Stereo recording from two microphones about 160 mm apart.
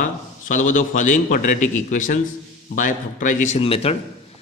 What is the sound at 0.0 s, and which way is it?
A man's voice, 50° left (ahead or behind).